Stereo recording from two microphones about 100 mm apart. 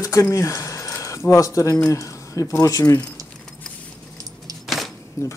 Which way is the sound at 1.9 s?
30° left (ahead or behind).